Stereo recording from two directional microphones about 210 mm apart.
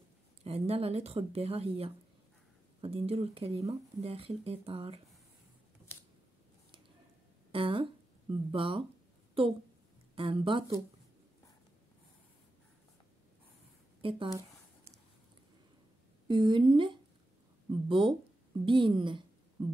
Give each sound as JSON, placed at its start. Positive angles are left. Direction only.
{"t": 0.4, "sound": "speech", "side_deg": -30}
{"t": 5.9, "sound": "a sound", "side_deg": 10}
{"t": 7.5, "sound": "speech", "side_deg": -25}
{"t": 10.1, "sound": "speech", "side_deg": -25}
{"t": 14.0, "sound": "speech", "side_deg": -25}
{"t": 16.3, "sound": "a woman's voice", "side_deg": -20}